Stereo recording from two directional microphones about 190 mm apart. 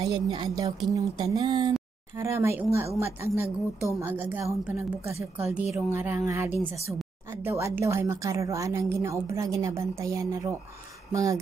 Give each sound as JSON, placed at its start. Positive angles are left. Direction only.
{"t": 0.0, "sound": "a woman's voice", "side_deg": -25}
{"t": 4.0, "sound": "a woman's voice", "side_deg": -10}